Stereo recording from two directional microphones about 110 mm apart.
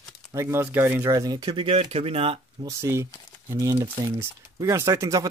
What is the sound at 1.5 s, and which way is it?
Speech, 55° right (ahead or behind).